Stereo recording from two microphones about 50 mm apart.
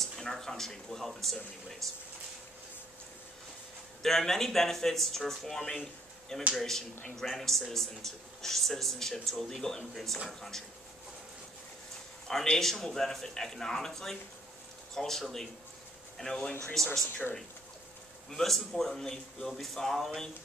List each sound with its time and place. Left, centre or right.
0.0 s a man's voice: centre
4.0 s a man's voice: centre
12.3 s a man's voice: centre
16.2 s speech: centre
16.7 s a man's voice: centre
17.1 s speech: left
18.3 s a man's voice: centre